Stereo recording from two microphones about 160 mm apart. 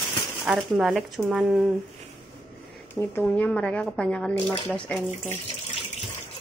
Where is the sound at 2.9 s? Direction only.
15° left (ahead or behind).